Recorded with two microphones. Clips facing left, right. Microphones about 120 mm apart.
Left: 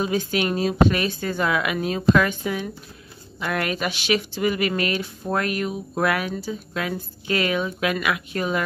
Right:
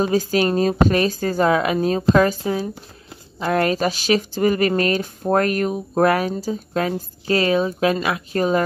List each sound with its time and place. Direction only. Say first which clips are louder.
0.0 s speech: right 5 dB; 40° right (ahead or behind)